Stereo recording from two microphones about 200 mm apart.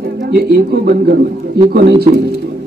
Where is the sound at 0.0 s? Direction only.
50° right (ahead or behind).